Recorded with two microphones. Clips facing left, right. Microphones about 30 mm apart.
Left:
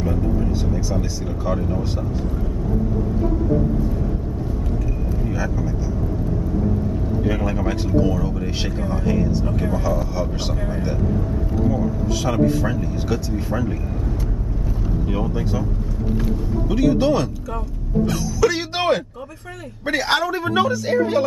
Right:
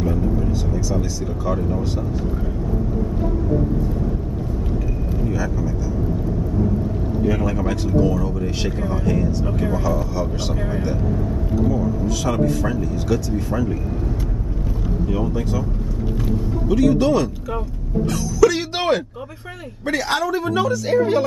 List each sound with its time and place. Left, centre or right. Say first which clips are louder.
0.7 s vehicle: even; centre
1.4 s speech: even; centre
5.2 s speech: right 2 dB; centre
7.2 s speech: right 2 dB; centre
16.6 s speech: right 1 dB; centre
18.4 s music: right 3 dB; centre
20.1 s a woman's voice: left 1 dB; left
20.9 s speech: right 3 dB; centre